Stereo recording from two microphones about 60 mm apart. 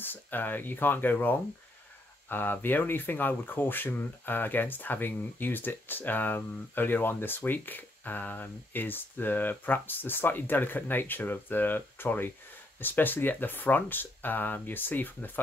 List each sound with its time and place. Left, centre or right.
0.0 s speech: left